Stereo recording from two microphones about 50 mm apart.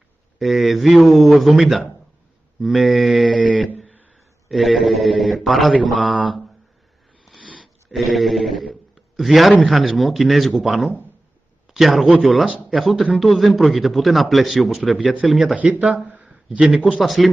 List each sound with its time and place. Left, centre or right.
0.4 s a man's voice: centre
4.5 s a man's voice: centre
5.9 s mantra: centre
7.6 s a man's voice: centre